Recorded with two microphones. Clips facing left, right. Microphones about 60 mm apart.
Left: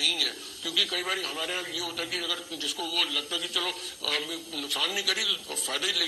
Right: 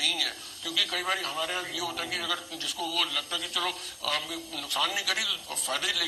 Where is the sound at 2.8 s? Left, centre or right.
Centre.